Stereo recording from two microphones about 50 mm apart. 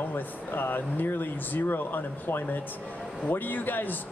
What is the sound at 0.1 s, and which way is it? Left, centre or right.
Speech, left.